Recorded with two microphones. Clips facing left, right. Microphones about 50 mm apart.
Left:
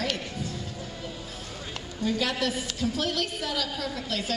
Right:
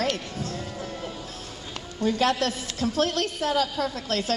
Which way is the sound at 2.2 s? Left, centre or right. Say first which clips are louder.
Right 4 dB; right.